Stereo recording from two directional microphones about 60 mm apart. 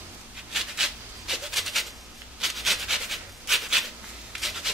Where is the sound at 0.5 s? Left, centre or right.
Centre.